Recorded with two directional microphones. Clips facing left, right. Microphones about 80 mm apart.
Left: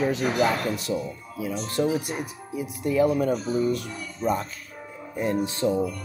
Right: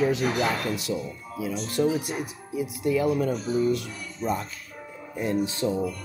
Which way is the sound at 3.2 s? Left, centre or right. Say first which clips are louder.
Even; left.